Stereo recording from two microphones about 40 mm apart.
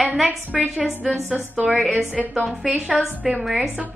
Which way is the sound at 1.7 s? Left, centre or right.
Centre.